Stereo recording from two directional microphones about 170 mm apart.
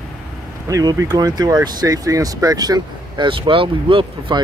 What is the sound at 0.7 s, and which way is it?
Speech, 20° right (ahead or behind).